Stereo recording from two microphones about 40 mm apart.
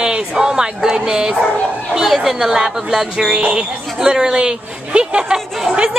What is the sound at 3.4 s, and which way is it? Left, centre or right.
A woman's voice, right.